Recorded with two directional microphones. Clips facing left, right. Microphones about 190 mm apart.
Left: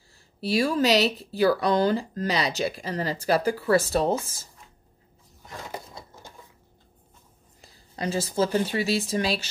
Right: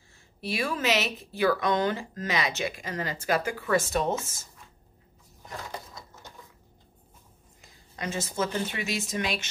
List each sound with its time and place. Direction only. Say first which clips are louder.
0.4 s speech: left 7 dB; 35° left (ahead or behind)
5.7 s a sound: left 2 dB; 30° left (ahead or behind)
7.6 s speech: left 5 dB; 35° left (ahead or behind)